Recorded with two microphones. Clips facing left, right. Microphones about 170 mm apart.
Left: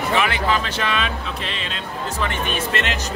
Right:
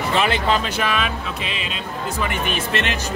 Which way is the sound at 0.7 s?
5° right (ahead or behind).